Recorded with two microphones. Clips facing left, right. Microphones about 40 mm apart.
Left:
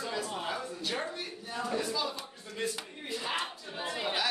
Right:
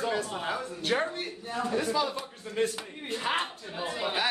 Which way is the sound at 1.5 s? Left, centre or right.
Centre.